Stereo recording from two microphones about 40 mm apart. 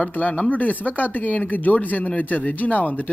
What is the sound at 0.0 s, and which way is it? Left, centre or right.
Speech, left.